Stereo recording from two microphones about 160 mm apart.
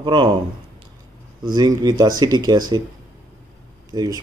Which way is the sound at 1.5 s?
25° right (ahead or behind).